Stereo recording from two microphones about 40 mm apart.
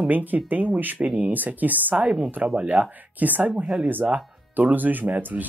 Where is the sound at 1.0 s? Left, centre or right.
Right.